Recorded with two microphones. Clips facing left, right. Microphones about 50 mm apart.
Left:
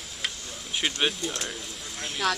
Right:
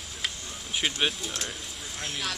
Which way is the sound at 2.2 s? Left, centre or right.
Left.